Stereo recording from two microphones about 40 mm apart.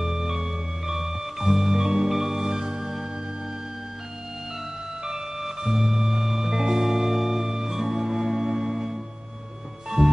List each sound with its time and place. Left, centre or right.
0.0 s music: centre
5.0 s music: centre
6.6 s music: centre
6.9 s music: centre